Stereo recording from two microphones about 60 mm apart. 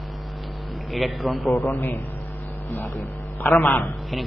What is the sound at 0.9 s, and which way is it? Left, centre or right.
Speech, centre.